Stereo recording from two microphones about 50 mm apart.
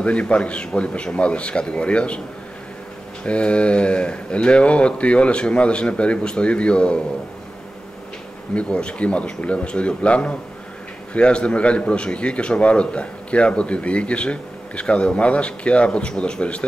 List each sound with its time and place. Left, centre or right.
0.0 s a man's voice: left
3.3 s a man's voice: left
8.5 s a man's voice: centre